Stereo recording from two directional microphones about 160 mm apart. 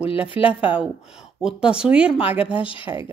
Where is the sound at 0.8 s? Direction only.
5° right (ahead or behind).